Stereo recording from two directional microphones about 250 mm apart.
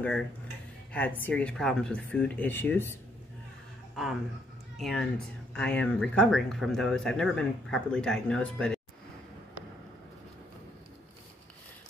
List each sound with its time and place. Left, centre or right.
0.0 s speech: centre
3.9 s speech: centre